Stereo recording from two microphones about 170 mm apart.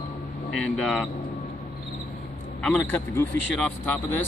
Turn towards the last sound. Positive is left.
turn(degrees=10)  # may be behind; listen again after turning